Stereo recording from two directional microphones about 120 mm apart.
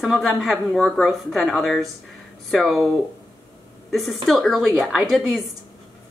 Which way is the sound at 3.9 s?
Centre (ahead or behind).